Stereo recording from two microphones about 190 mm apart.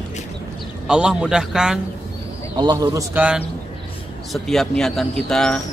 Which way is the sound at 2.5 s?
20° right (ahead or behind).